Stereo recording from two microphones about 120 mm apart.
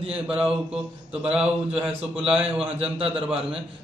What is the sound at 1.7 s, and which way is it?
Speech, 55° right (ahead or behind).